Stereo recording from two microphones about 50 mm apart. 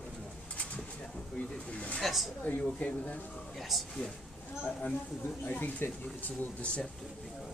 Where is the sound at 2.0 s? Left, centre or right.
Centre.